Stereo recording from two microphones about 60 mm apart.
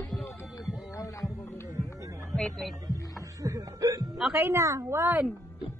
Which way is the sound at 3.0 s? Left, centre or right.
Left.